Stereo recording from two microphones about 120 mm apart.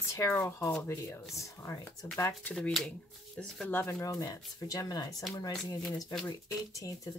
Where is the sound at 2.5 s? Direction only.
5° left (ahead or behind).